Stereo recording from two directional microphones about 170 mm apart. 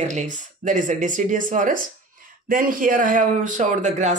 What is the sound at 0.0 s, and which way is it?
Speech, 45° right (ahead or behind).